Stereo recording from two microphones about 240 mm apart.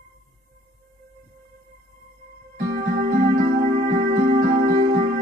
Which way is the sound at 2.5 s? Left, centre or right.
Right.